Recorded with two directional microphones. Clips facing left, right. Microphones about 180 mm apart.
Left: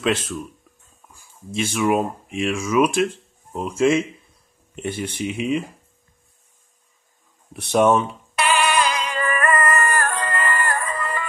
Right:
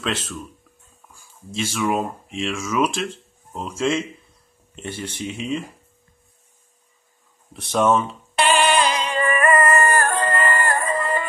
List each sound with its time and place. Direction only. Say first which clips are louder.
0.0 s speech: left 5 dB; 15° left (ahead or behind)
1.5 s speech: left 3 dB; 15° left (ahead or behind)
7.7 s speech: left 2 dB; 15° left (ahead or behind)
8.4 s synthetic singing: right 2 dB; 30° right (ahead or behind)
9.4 s music: right 3 dB; 25° right (ahead or behind)